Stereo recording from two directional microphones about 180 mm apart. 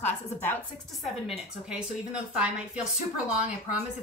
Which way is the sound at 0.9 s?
Centre (ahead or behind).